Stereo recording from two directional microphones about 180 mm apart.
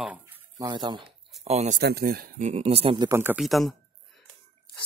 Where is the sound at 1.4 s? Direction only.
35° right (ahead or behind).